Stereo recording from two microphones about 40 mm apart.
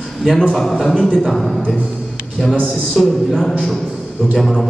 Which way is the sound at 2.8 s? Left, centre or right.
Centre.